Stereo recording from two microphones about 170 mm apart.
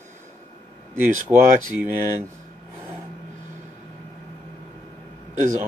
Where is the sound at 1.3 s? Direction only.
10° right (ahead or behind).